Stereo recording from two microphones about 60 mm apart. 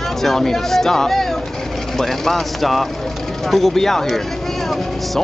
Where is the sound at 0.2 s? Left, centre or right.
Centre.